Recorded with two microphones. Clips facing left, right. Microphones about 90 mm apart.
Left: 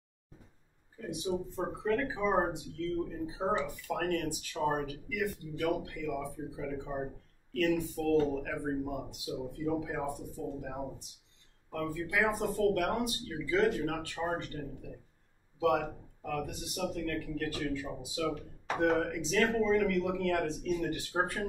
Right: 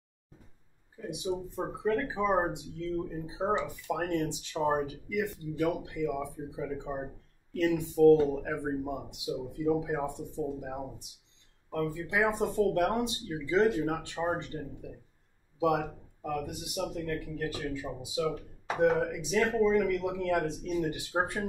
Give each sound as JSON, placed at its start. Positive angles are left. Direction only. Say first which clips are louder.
{"t": 0.9, "sound": "a man's voice", "louder": "right 1 dB", "side_deg": -15}
{"t": 11.9, "sound": "speech", "louder": "even", "side_deg": -25}
{"t": 15.6, "sound": "a man's voice", "louder": "right 1 dB", "side_deg": -20}